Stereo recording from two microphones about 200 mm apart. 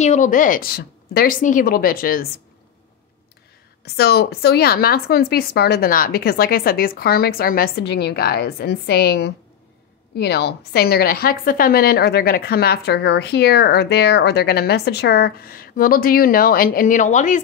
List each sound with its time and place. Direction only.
0.0 s a woman's voice: 35° left (ahead or behind)
3.8 s a woman's voice: 55° left (ahead or behind); by 17.4 s 40° left (ahead or behind)